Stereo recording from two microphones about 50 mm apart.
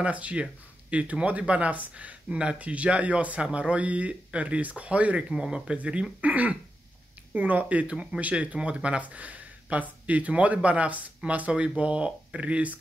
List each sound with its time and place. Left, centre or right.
0.0 s speech: right
2.2 s speech: right